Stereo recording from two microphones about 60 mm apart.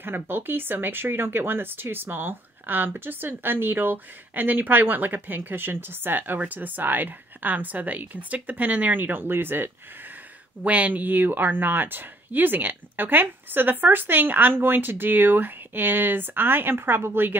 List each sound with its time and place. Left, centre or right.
0.0 s speech: right
10.6 s speech: right